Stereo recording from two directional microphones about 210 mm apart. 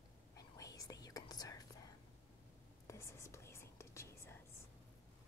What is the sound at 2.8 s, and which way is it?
Whispering, 15° left (ahead or behind).